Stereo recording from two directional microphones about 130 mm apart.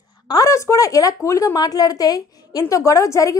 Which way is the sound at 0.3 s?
25° left (ahead or behind).